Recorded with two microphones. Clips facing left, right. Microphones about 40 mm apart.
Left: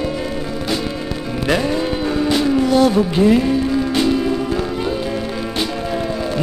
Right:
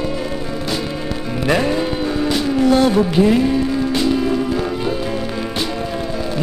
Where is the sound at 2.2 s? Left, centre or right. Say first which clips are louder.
Even; centre.